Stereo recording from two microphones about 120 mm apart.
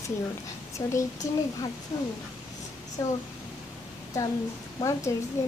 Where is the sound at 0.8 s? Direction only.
25° left (ahead or behind).